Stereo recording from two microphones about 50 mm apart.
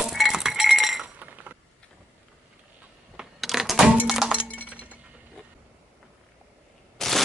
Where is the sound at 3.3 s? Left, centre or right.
Centre.